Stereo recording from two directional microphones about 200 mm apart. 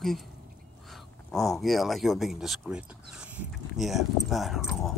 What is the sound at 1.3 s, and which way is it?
Speech, centre (ahead or behind).